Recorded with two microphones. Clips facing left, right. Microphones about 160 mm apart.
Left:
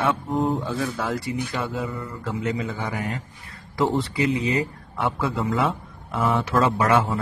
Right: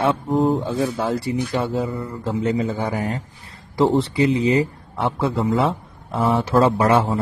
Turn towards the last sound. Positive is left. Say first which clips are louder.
# right 3 dB
turn(degrees=-30)  # may be behind; listen again after turning